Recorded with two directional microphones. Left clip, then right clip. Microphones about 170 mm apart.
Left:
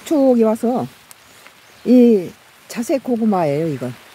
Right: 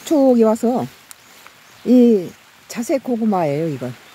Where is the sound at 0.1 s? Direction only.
25° right (ahead or behind).